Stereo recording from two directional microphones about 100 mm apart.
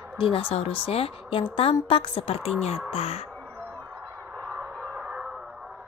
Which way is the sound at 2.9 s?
85° left.